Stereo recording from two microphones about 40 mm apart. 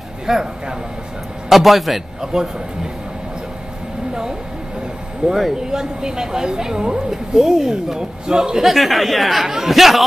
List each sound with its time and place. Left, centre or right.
0.3 s speech: centre
1.5 s speech: centre
2.3 s speech: centre
5.2 s speech: centre
8.6 s speech: centre